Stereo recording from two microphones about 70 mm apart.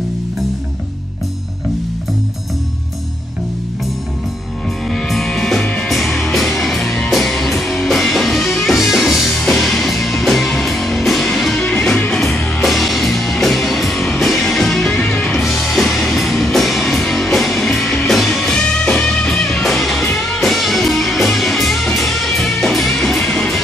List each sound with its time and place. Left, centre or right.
4.8 s music: centre
11.7 s music: centre
12.6 s music: centre
15.0 s music: left
15.4 s music: centre
18.4 s music: centre